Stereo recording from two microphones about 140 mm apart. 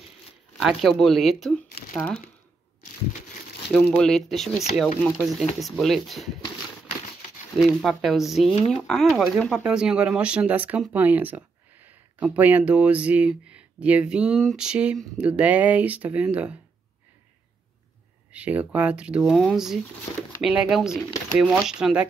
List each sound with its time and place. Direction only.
0.6 s speech: centre (ahead or behind)
3.7 s speech: 5° left (ahead or behind)
7.5 s speech: 5° right (ahead or behind)
18.3 s speech: 10° right (ahead or behind)